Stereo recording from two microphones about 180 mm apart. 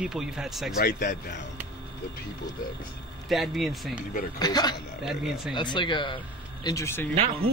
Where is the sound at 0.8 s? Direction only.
55° left (ahead or behind).